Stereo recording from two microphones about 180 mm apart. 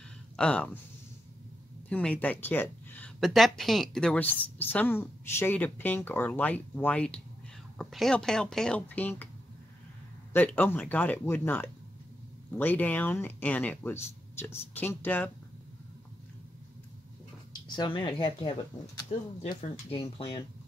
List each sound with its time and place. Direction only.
0.4 s speech: 5° left (ahead or behind)
1.9 s speech: 5° left (ahead or behind)
10.3 s speech: 10° left (ahead or behind)
17.5 s speech: 25° left (ahead or behind)
19.1 s speech: 40° left (ahead or behind)
19.5 s speech: 25° left (ahead or behind)